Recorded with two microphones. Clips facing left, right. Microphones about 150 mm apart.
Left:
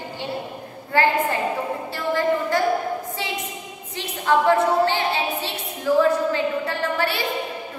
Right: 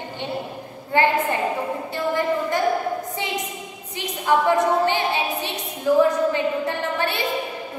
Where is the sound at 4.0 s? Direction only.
15° right (ahead or behind).